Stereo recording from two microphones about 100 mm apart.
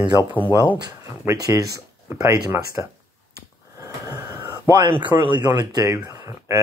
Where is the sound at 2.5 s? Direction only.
25° right (ahead or behind).